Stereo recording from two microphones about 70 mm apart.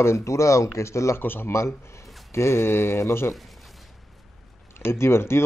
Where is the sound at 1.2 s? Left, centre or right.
Left.